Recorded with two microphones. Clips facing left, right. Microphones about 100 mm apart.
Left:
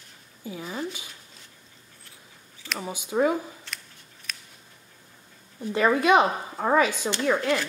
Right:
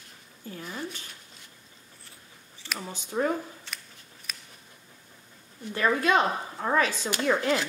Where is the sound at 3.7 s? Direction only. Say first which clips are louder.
Left 1 dB; centre (ahead or behind).